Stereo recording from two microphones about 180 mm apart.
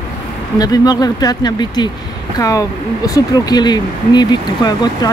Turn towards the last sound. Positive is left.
turn(degrees=25)  # may be behind; listen again after turning